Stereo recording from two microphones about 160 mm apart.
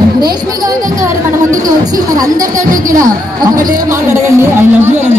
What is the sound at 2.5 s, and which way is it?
A woman's voice, 55° right (ahead or behind).